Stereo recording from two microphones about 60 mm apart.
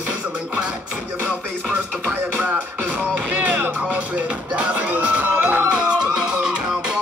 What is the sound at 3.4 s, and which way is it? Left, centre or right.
Music, right.